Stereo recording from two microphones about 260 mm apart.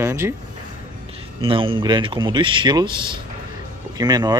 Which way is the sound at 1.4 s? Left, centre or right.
Centre.